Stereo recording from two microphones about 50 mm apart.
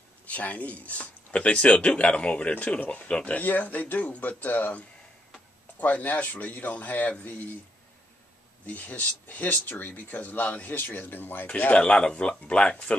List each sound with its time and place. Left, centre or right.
0.3 s speech: left
8.6 s speech: left
11.7 s speech: left